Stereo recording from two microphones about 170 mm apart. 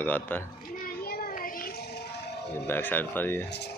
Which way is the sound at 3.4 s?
80° left.